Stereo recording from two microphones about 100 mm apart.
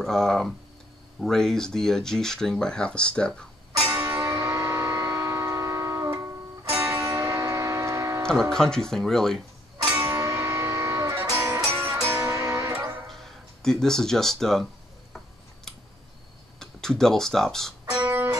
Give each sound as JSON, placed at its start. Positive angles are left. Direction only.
{"t": 0.0, "sound": "speech", "side_deg": 5}
{"t": 3.8, "sound": "music", "side_deg": -15}
{"t": 4.3, "sound": "music", "side_deg": -30}
{"t": 8.3, "sound": "speech", "side_deg": 5}
{"t": 10.0, "sound": "music", "side_deg": -30}
{"t": 13.0, "sound": "speech", "side_deg": 0}
{"t": 16.5, "sound": "speech", "side_deg": 5}
{"t": 17.8, "sound": "music", "side_deg": -10}